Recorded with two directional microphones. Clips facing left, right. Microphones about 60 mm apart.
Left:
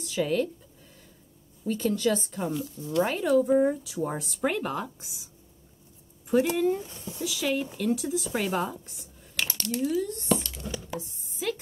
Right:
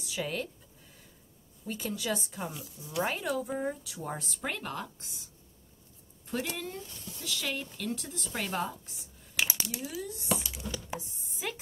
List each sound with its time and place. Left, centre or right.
0.0 s speech: centre
1.7 s speech: centre
6.9 s speech: left
7.2 s speech: centre
10.9 s chopping: centre
11.3 s speech: centre